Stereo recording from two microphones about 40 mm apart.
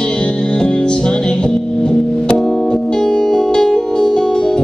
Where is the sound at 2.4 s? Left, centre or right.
Centre.